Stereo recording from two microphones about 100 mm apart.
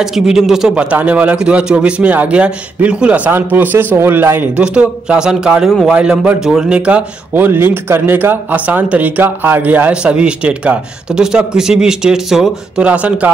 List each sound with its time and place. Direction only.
0.0 s speech: 5° right (ahead or behind); by 4.5 s 20° right (ahead or behind)
4.6 s speech: 10° right (ahead or behind)